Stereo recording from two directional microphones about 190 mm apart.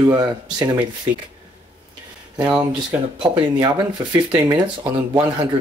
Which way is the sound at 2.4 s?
5° right (ahead or behind).